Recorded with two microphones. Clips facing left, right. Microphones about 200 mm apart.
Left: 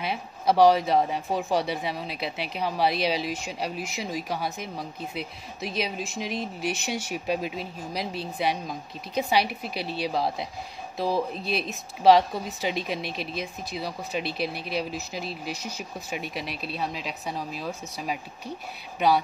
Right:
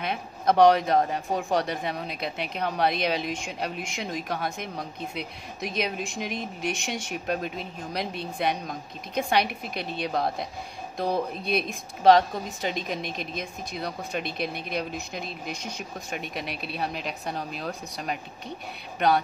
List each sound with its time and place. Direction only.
0.0 s speech: 5° left (ahead or behind)